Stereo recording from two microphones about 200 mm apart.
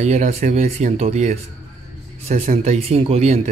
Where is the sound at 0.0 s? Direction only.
35° right (ahead or behind).